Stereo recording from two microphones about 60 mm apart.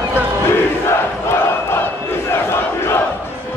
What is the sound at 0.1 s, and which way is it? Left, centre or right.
Battle cry, left.